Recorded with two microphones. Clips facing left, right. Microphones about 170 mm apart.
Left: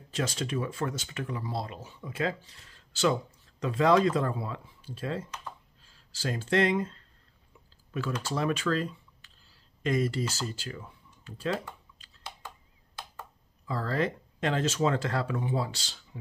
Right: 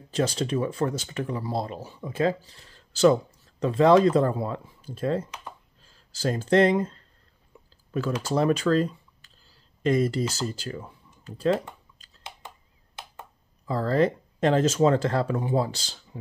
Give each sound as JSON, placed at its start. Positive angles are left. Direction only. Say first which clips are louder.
{"t": 0.1, "sound": "speech", "louder": "right 6 dB", "side_deg": -35}
{"t": 8.3, "sound": "speech", "louder": "right 7 dB", "side_deg": -40}
{"t": 12.9, "sound": "a sound", "louder": "right 1 dB", "side_deg": -20}
{"t": 13.7, "sound": "speech", "louder": "right 7 dB", "side_deg": -35}